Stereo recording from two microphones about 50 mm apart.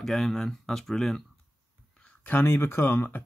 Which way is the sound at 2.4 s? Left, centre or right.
Left.